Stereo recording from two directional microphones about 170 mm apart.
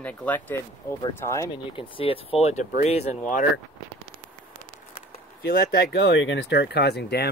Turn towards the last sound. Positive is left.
turn(degrees=70)  # may be behind; listen again after turning